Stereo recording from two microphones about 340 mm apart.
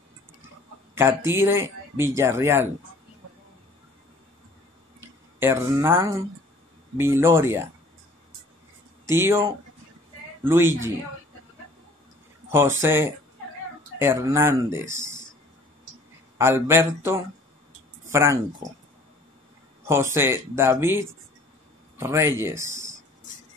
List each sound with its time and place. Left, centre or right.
0.9 s speech: centre
5.0 s speech: centre
9.1 s speech: centre
12.4 s speech: centre
16.3 s speech: centre
19.9 s speech: centre
22.7 s a sound: right